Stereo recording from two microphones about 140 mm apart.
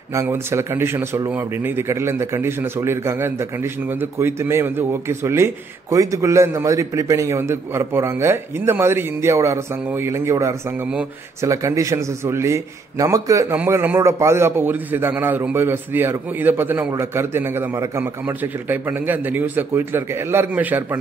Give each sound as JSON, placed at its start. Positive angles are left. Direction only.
{"t": 0.1, "sound": "a man's voice", "side_deg": -20}